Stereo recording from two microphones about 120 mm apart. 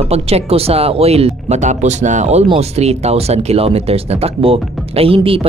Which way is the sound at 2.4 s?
55° right (ahead or behind).